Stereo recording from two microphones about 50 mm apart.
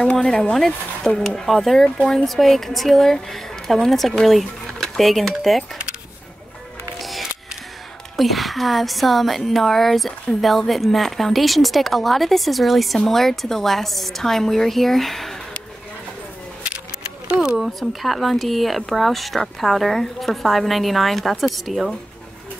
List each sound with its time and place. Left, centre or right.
0.2 s speech: centre
2.0 s speech: centre
2.2 s speech: centre
7.0 s music: centre
8.2 s speech: centre
17.4 s a sound: centre
17.6 s speech: centre